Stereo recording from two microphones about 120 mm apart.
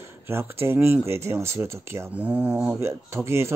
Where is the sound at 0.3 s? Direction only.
20° right (ahead or behind).